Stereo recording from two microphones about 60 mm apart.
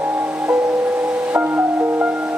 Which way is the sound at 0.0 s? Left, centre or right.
Right.